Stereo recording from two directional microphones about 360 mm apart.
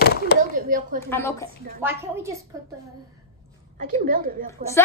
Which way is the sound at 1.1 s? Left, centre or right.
Centre.